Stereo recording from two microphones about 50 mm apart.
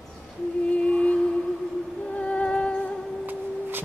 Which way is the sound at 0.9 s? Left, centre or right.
Left.